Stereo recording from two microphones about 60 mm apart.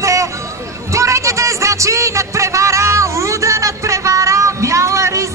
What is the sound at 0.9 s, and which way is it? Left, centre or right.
Music, right.